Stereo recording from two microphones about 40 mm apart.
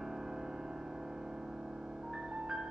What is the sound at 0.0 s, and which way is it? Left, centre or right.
Music, centre.